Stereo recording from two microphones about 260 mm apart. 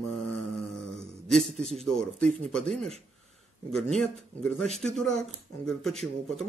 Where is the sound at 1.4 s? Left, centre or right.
Right.